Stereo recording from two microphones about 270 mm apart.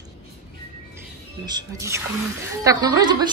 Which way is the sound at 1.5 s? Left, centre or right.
Centre.